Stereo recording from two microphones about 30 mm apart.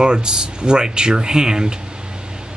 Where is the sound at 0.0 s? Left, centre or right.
Right.